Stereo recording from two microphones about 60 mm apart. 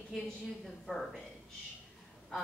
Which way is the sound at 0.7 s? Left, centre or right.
Centre.